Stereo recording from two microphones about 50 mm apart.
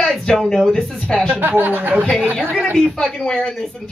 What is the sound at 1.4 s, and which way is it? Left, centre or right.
Speech, right.